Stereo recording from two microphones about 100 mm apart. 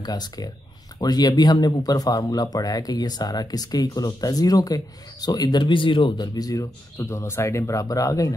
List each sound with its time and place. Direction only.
0.0 s speech: 45° left (ahead or behind)
7.0 s speech: 25° left (ahead or behind)